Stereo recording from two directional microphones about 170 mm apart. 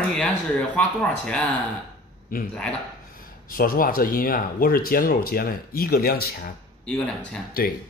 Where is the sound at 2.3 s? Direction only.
60° left (ahead or behind).